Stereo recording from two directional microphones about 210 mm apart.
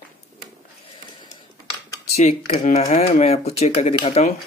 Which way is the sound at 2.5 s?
30° left (ahead or behind).